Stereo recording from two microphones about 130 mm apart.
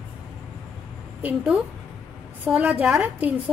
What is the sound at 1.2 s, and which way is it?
A woman's voice, 10° right (ahead or behind).